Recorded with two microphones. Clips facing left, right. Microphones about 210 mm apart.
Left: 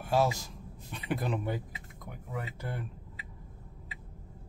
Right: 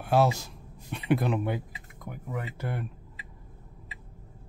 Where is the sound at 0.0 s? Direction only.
65° right (ahead or behind).